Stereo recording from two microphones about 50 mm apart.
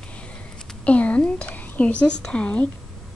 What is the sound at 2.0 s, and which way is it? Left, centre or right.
Speech, centre.